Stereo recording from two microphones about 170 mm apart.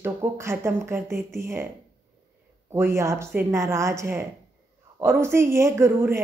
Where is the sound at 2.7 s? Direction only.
15° right (ahead or behind).